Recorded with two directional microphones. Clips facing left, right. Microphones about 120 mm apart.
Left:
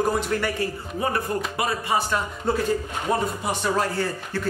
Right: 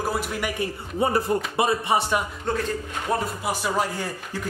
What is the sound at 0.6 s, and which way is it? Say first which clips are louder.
A man's voice: right 2 dB; 25° right (ahead or behind).